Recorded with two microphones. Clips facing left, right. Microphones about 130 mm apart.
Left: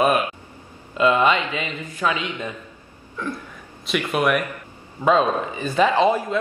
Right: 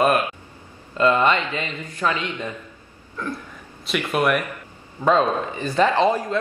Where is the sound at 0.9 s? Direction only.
15° left (ahead or behind).